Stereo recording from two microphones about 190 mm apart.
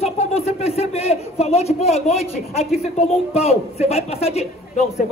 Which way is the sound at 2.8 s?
35° left (ahead or behind).